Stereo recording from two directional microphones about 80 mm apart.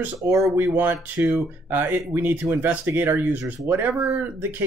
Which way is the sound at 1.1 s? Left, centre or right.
Right.